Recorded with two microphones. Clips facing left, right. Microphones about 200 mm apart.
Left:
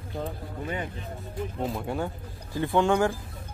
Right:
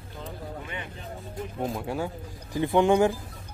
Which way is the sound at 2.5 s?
15° right (ahead or behind).